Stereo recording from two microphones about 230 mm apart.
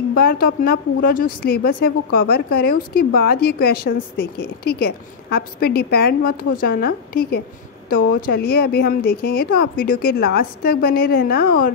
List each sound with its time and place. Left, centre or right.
0.1 s a woman's voice: left